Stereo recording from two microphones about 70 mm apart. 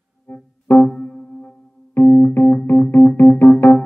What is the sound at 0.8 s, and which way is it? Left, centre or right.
Keyboard, centre.